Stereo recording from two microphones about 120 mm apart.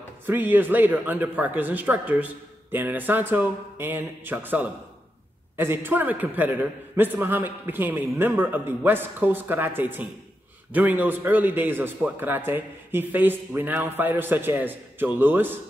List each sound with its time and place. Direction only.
0.3 s a man's voice: 15° right (ahead or behind)